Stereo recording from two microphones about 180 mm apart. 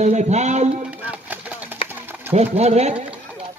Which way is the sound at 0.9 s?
10° right (ahead or behind).